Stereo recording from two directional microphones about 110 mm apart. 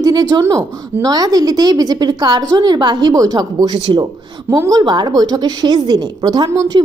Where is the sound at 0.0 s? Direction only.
35° right (ahead or behind).